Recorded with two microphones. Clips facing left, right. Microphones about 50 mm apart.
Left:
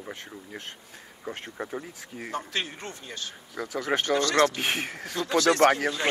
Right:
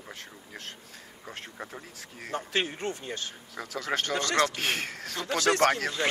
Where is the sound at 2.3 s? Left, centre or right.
Right.